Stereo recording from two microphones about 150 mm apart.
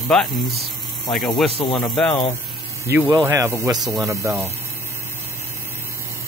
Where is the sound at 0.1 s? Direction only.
5° left (ahead or behind).